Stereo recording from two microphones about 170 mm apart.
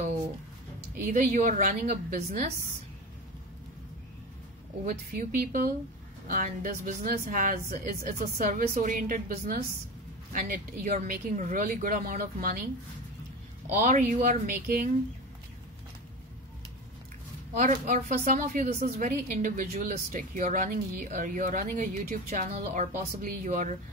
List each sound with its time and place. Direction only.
0.9 s a woman's voice: 50° right (ahead or behind)
4.8 s a woman's voice: 55° right (ahead or behind)
13.8 s a woman's voice: 50° right (ahead or behind)
17.6 s a woman's voice: 50° right (ahead or behind)